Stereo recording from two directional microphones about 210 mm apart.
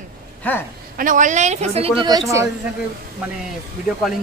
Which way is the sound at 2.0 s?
15° right (ahead or behind).